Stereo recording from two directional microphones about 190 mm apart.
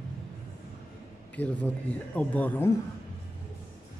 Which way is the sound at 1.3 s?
10° left (ahead or behind).